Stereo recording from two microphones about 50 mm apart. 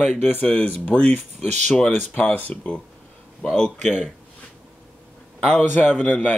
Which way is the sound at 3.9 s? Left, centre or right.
Centre.